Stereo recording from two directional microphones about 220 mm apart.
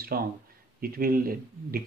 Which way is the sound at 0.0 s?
40° right (ahead or behind).